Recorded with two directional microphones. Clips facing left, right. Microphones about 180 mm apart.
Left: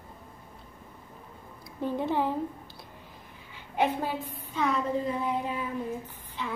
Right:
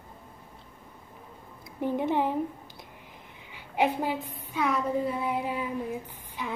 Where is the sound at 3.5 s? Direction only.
15° right (ahead or behind).